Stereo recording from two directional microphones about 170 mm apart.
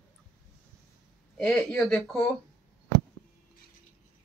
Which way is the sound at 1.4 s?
5° left (ahead or behind).